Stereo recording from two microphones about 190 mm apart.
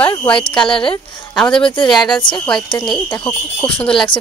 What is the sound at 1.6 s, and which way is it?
Speech, 25° left (ahead or behind).